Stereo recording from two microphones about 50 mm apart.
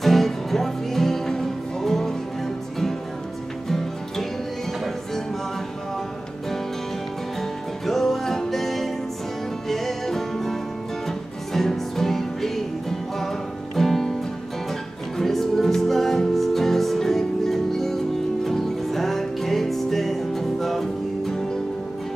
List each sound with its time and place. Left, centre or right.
0.0 s music: centre
7.8 s music: centre
13.7 s music: centre